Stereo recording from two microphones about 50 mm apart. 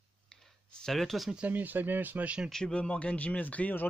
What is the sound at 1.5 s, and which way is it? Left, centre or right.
Speech, right.